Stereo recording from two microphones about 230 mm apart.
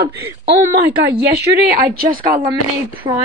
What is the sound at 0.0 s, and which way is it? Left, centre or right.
Speech, right.